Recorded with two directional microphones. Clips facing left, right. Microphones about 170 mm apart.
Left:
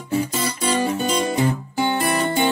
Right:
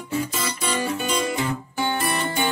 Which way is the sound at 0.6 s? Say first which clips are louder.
Left 5 dB; 40° left (ahead or behind).